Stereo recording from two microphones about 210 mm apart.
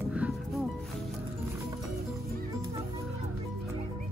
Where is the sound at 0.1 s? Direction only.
5° right (ahead or behind).